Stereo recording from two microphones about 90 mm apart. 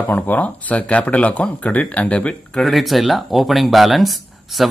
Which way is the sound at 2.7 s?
Centre (ahead or behind).